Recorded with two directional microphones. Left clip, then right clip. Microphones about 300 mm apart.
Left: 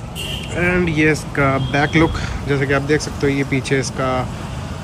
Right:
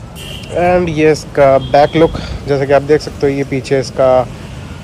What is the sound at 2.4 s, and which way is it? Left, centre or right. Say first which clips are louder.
Speech: right 8 dB; centre.